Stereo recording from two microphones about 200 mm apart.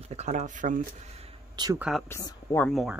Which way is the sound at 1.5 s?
20° right (ahead or behind).